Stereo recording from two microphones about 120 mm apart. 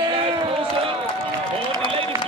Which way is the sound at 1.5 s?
50° right (ahead or behind).